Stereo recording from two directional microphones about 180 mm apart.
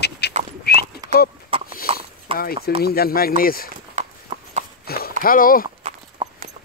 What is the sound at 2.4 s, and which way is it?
Speech, 55° left (ahead or behind).